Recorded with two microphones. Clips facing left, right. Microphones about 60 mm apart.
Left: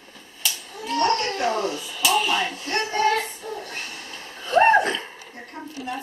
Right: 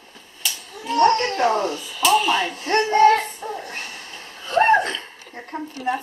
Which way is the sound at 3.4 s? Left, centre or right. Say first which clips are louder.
Right 3 dB; right.